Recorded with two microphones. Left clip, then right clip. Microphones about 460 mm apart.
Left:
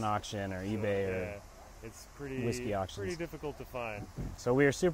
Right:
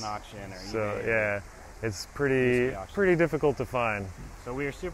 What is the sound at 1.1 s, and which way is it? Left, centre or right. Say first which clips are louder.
Speech: right 12 dB; right.